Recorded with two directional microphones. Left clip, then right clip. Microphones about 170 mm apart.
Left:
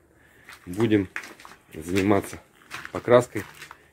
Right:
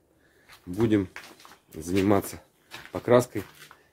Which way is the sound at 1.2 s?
60° left (ahead or behind).